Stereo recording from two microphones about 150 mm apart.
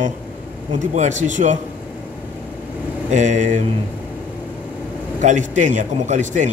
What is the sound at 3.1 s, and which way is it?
Speech, 55° right (ahead or behind).